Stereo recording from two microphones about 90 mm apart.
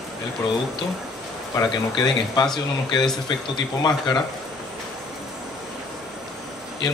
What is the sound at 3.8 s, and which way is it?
Speech, 50° left (ahead or behind).